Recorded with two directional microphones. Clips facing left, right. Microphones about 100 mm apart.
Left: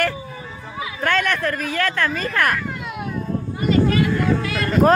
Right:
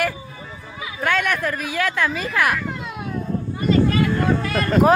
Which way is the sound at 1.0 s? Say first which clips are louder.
Left 1 dB; 10° right (ahead or behind).